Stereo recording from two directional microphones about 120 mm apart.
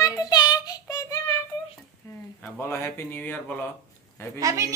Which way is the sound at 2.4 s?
20° left (ahead or behind).